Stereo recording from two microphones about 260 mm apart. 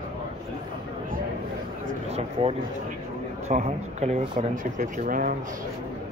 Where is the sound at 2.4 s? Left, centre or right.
Right.